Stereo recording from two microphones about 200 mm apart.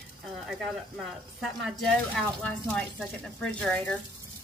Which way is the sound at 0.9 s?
Centre (ahead or behind).